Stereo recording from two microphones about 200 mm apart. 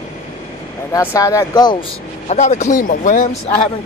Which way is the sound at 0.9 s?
15° left (ahead or behind).